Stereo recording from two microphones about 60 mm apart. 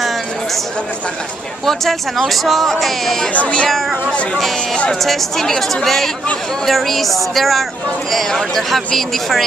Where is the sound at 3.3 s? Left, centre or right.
Left.